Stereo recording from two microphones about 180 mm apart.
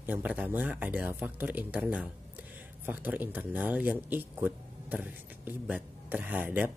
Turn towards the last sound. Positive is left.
turn(degrees=-10)  # may be behind; listen again after turning